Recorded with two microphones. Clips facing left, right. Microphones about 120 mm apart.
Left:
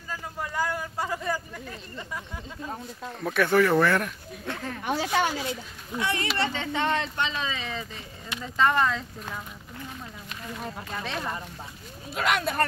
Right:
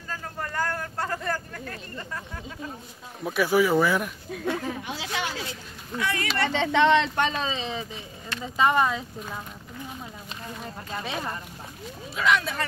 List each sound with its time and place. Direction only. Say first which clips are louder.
0.1 s a sound: even; 10° left (ahead or behind)
3.3 s speech: even; 5° right (ahead or behind)
4.8 s speech: left 6 dB; 50° left (ahead or behind)
5.9 s speech: even; 25° left (ahead or behind)
6.5 s speech: right 7 dB; 90° right
7.2 s speech: right 4 dB; 50° right (ahead or behind)
7.4 s speech: right 3 dB; 25° right (ahead or behind)
8.5 s speech: right 1 dB; 15° right (ahead or behind)
11.0 s speech: right 1 dB; 5° right (ahead or behind)
12.2 s speech: even; 50° left (ahead or behind)